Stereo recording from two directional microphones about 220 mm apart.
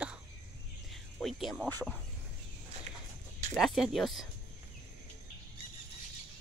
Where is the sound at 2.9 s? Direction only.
30° right (ahead or behind).